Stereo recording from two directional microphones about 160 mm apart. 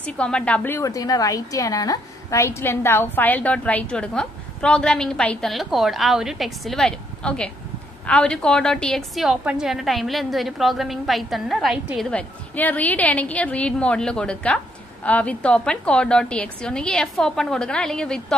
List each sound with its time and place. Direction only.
0.0 s a woman's voice: 5° left (ahead or behind)
12.1 s a woman's voice: 10° left (ahead or behind)